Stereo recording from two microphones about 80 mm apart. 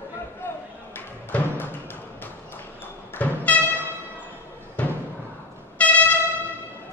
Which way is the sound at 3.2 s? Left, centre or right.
Centre.